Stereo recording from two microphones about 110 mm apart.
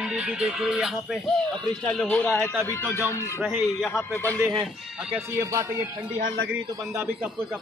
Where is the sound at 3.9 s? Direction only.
15° left (ahead or behind).